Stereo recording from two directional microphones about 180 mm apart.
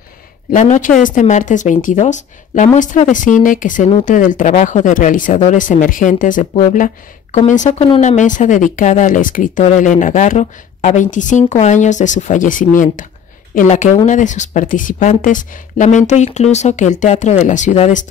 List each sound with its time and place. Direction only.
0.5 s speech: 45° left (ahead or behind)